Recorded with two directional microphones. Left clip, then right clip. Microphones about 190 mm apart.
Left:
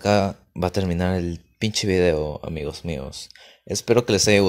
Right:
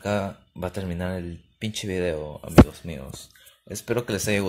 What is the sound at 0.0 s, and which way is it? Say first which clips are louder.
Speech: left 7 dB; 50° left (ahead or behind).